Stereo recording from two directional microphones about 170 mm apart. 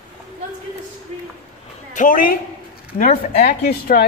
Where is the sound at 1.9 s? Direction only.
50° left (ahead or behind); by 4.1 s 65° left (ahead or behind).